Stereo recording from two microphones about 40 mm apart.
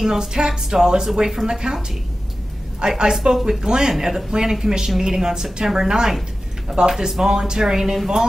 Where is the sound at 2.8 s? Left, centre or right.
Centre.